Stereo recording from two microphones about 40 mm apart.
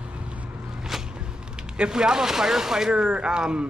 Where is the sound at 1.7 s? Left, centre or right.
Right.